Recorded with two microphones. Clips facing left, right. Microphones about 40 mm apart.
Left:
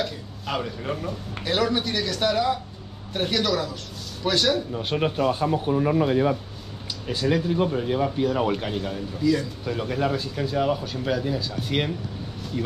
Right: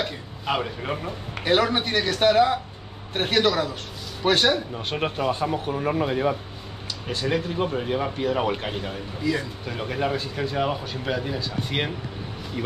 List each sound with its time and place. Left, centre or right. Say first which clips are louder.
0.0 s a man's voice: right 1 dB; right
4.9 s speech: left 2 dB; centre